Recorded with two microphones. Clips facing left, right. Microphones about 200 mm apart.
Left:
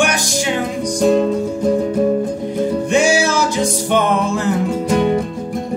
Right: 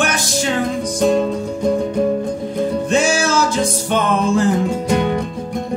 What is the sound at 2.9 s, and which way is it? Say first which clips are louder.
Music: left 3 dB; 15° left (ahead or behind).